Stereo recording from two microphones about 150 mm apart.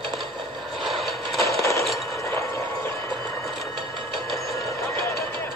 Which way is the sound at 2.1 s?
20° left (ahead or behind).